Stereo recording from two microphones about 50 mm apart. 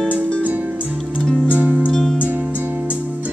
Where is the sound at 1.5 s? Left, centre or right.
Right.